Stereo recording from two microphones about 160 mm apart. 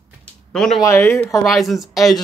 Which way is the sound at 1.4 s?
Centre (ahead or behind).